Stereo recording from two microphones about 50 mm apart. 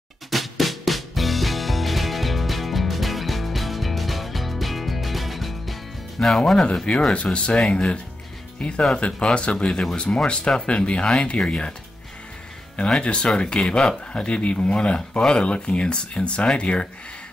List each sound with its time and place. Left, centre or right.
0.3 s music: centre
8.5 s speech: left
13.0 s speech: centre